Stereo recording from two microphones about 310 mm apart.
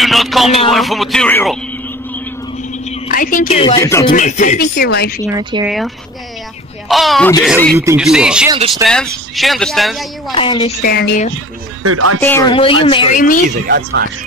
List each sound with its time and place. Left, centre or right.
0.0 s a sound: centre
0.7 s speech: centre
3.1 s speech: left; by 4.1 s centre
4.1 s speech: left
5.3 s speech: centre
6.9 s speech: centre
8.5 s speech: centre
8.8 s speech: centre
10.3 s speech: centre
10.8 s speech: left
11.8 s speech: right
12.2 s speech: centre; by 13.4 s left
13.7 s speech: right